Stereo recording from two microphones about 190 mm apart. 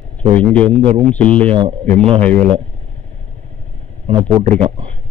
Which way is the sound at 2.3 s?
30° right (ahead or behind).